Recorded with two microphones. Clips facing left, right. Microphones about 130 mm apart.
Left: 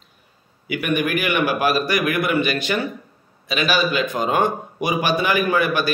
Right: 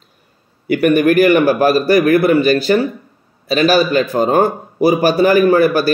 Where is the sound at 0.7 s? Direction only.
40° right (ahead or behind).